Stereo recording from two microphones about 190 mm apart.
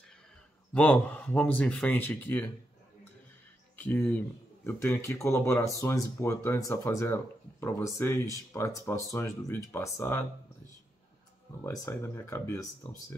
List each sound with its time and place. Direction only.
0.7 s speech: 5° left (ahead or behind)
3.7 s speech: 10° left (ahead or behind)
11.6 s speech: 15° left (ahead or behind)